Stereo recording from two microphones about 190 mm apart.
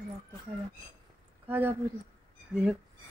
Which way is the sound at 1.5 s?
10° right (ahead or behind).